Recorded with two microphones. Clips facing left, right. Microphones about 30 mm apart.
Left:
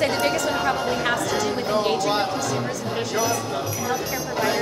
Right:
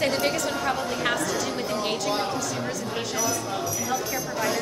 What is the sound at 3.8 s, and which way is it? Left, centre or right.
Speech, left.